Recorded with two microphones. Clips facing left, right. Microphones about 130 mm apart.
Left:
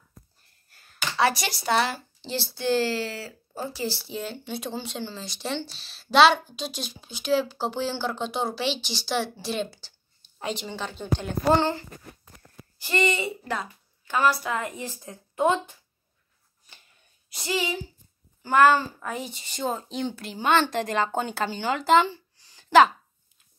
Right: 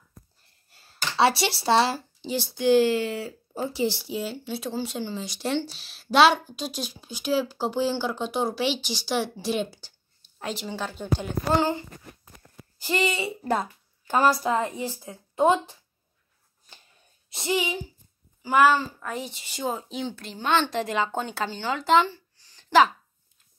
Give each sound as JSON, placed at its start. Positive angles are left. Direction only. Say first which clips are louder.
{"t": 0.7, "sound": "speech", "louder": "even", "side_deg": -25}
{"t": 2.2, "sound": "a woman's voice", "louder": "right 4 dB", "side_deg": -15}
{"t": 4.1, "sound": "speech", "louder": "right 2 dB", "side_deg": -5}
{"t": 12.8, "sound": "speech", "louder": "left 1 dB", "side_deg": -15}
{"t": 13.4, "sound": "a woman's voice", "louder": "right 5 dB", "side_deg": -40}
{"t": 14.8, "sound": "speech", "louder": "right 4 dB", "side_deg": -15}
{"t": 17.3, "sound": "a woman's voice", "louder": "right 2 dB", "side_deg": -20}
{"t": 18.4, "sound": "a child's voice", "louder": "left 1 dB", "side_deg": -5}
{"t": 22.0, "sound": "a sound", "louder": "left 1 dB", "side_deg": 15}